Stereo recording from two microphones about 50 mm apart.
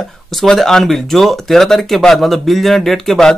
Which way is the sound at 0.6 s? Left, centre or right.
Centre.